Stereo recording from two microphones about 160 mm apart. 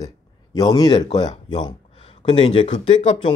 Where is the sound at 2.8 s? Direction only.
45° left (ahead or behind).